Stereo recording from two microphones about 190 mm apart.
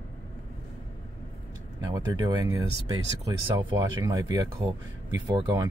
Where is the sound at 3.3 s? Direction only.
20° right (ahead or behind).